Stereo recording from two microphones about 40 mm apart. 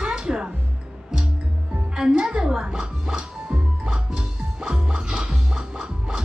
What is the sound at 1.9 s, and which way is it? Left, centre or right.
Music, centre.